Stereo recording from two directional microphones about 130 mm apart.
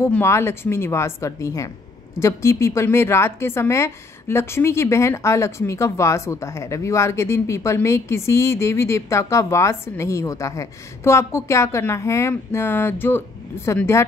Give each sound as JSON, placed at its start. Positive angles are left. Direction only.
{"t": 0.2, "sound": "a woman's voice", "side_deg": 20}